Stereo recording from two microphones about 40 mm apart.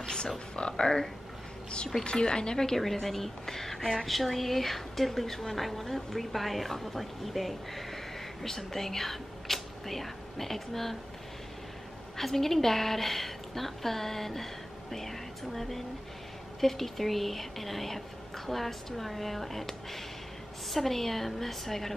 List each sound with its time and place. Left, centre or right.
0.0 s a sound: centre
0.6 s a woman's voice: left
12.2 s a woman's voice: centre